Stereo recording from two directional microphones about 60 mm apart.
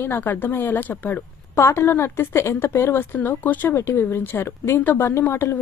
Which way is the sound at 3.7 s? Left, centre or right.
Left.